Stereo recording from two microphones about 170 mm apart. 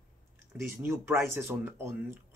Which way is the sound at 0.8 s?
15° right (ahead or behind).